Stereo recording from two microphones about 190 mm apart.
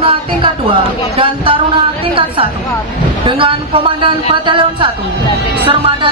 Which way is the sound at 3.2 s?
25° right (ahead or behind).